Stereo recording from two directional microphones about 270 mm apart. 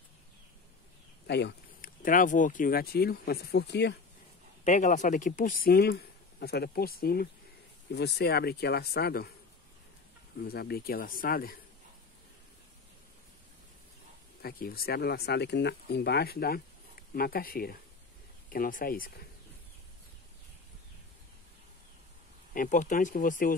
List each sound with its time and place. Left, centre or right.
1.2 s speech: left
4.6 s speech: left
10.4 s speech: left
14.4 s speech: left
22.5 s speech: left